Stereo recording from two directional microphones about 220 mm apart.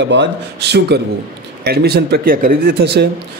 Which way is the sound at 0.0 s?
50° right (ahead or behind).